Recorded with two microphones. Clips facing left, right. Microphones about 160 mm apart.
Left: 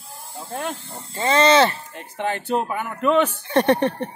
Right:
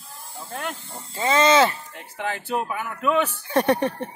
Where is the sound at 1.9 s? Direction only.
25° left (ahead or behind).